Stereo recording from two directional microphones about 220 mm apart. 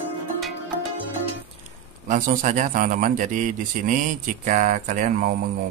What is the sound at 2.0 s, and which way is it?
Speech, 35° right (ahead or behind).